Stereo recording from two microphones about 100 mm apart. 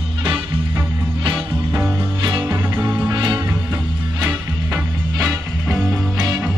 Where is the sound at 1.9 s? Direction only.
50° right (ahead or behind).